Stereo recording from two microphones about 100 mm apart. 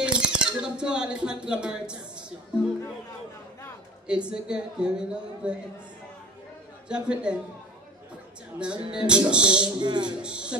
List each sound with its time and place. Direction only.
0.0 s music: 10° right (ahead or behind)
4.1 s speech: 10° right (ahead or behind)
6.9 s speech: 10° right (ahead or behind)
8.6 s speech: 10° right (ahead or behind)
9.8 s speech: 50° right (ahead or behind)
10.1 s speech: 10° right (ahead or behind)